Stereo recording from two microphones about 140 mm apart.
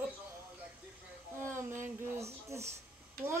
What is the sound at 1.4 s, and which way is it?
A child's voice, 20° right (ahead or behind).